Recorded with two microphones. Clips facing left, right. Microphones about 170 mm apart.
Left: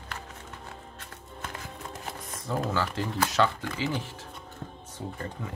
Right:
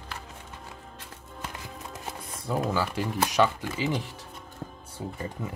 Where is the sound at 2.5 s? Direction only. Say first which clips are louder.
Right 2 dB; 10° right (ahead or behind).